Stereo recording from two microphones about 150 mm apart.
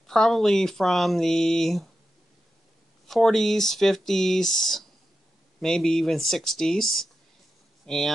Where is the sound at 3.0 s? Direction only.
Centre (ahead or behind).